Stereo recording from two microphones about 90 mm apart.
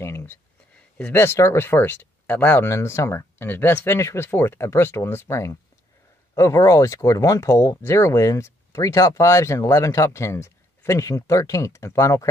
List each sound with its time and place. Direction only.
0.0 s a sound: 25° left (ahead or behind)
0.9 s speech: 15° left (ahead or behind)
1.2 s speech: 30° left (ahead or behind)